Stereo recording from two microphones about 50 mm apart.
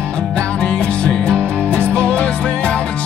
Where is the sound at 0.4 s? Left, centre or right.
Centre.